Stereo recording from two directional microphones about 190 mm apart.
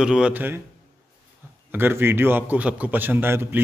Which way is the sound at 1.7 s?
10° right (ahead or behind).